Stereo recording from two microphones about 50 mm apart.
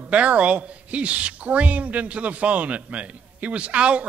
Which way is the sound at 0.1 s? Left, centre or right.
Right.